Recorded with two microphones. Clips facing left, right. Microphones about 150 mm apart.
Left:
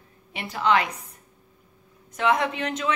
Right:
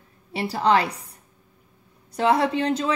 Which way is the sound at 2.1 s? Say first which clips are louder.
Right 3 dB; 35° right (ahead or behind).